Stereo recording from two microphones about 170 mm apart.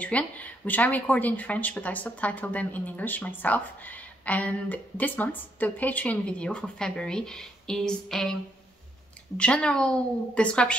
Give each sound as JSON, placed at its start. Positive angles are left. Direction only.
{"t": 0.0, "sound": "speech", "side_deg": 10}
{"t": 9.4, "sound": "a woman's voice", "side_deg": 5}